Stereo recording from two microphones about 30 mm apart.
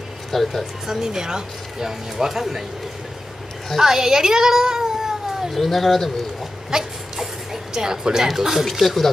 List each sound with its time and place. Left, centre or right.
0.3 s speech: centre
0.8 s speech: centre
3.8 s a child's voice: centre
4.9 s cat: centre
5.5 s speech: centre
6.7 s a child's voice: centre
8.8 s speech: centre